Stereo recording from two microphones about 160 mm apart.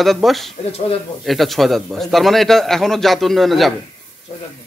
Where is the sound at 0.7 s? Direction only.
40° left (ahead or behind).